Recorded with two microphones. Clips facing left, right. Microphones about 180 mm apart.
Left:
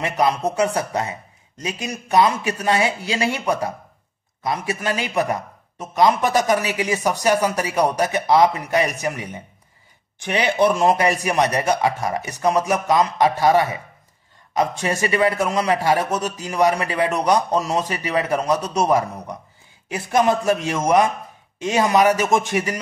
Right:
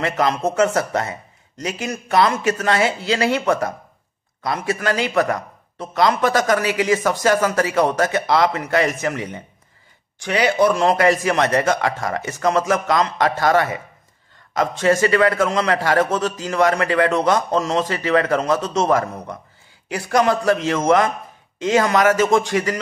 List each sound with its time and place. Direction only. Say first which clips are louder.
0.0 s a man's voice: even; 15° left (ahead or behind)